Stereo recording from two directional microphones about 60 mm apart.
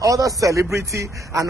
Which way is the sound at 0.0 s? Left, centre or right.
Right.